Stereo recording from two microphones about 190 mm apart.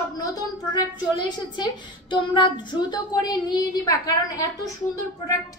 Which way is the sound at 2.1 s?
25° left (ahead or behind).